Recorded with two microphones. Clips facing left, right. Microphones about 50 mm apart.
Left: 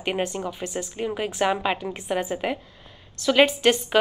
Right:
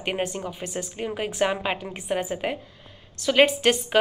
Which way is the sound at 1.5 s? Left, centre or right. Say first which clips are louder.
Left 3 dB; right.